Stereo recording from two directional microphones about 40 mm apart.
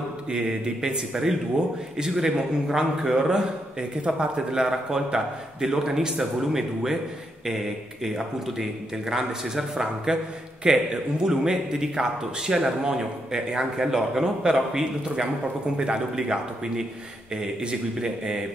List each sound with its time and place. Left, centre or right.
0.3 s a man's voice: centre
4.5 s a man's voice: centre